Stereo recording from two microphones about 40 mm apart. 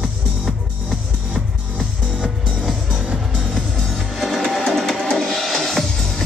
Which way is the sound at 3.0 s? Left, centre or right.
Centre.